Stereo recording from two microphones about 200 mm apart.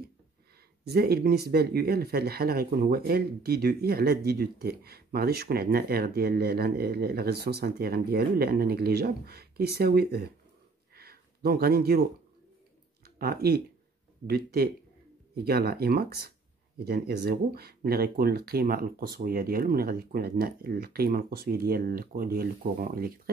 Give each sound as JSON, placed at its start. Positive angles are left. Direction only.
{"t": 0.8, "sound": "speech", "side_deg": -50}
{"t": 11.0, "sound": "a sound", "side_deg": -50}
{"t": 13.0, "sound": "speech", "side_deg": -50}